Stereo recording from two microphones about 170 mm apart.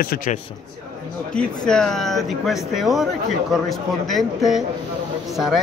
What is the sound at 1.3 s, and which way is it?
Speech, 5° left (ahead or behind).